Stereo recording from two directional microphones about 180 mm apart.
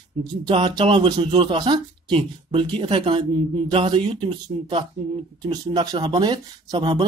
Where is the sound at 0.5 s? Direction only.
25° right (ahead or behind).